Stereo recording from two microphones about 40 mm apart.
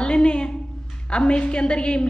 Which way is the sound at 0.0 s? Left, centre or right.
Left.